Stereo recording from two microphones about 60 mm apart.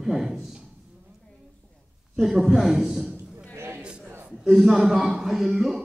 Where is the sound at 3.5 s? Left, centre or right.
Right.